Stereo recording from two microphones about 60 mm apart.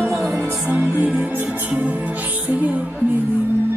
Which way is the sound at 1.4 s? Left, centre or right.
Right.